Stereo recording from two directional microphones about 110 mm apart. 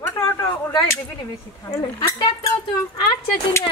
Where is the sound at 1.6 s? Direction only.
30° left (ahead or behind).